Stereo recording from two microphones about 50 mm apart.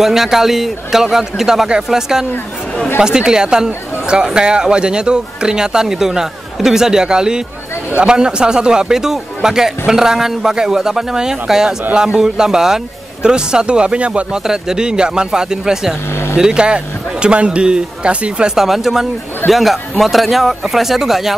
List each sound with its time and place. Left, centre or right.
0.0 s speech: centre; by 14.4 s right
14.4 s speech: centre
16.1 s vehicle: left
16.3 s speech: centre
18.6 s speech: centre